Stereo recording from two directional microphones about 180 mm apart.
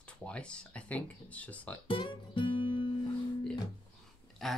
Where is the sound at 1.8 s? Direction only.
25° left (ahead or behind).